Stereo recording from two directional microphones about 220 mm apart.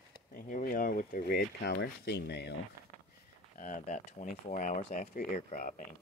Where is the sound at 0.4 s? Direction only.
40° left (ahead or behind).